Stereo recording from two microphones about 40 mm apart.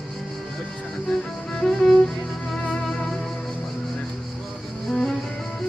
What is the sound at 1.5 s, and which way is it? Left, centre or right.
Music, centre.